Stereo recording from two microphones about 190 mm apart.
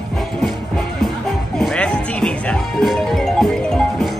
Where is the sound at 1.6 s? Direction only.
5° left (ahead or behind).